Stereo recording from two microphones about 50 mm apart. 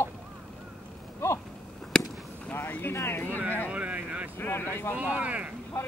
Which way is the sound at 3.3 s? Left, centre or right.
Right.